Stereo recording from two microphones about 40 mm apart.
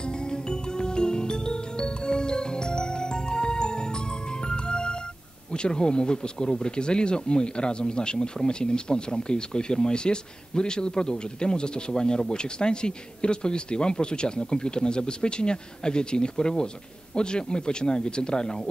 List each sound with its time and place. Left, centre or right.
0.3 s music: left
5.5 s speech: left